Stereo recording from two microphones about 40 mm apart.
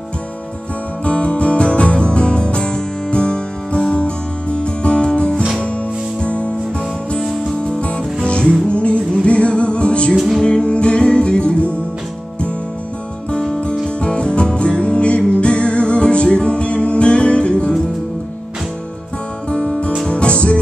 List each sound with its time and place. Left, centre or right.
1.0 s music: left
7.8 s music: left
10.1 s music: centre
10.4 s music: left
13.3 s music: centre
19.5 s music: left